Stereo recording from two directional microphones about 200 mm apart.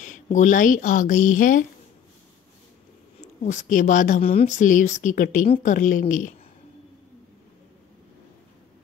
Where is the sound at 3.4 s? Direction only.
40° left (ahead or behind).